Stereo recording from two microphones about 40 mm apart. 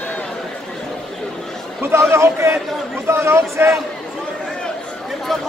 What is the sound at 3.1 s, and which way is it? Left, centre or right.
Speech, right.